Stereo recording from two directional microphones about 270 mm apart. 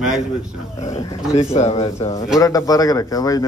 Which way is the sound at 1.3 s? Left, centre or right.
Left.